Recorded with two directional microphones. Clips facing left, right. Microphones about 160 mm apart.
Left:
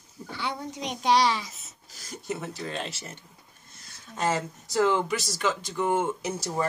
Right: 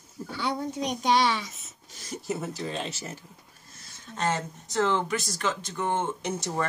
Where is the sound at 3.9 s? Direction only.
5° left (ahead or behind).